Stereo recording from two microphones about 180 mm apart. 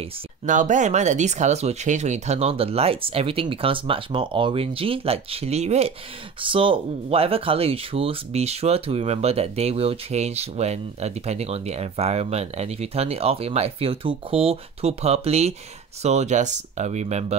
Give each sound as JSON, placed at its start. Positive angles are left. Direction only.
{"t": 0.0, "sound": "speech", "side_deg": -45}